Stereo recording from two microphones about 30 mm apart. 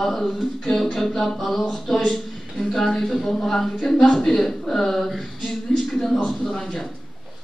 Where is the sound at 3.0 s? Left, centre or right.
Centre.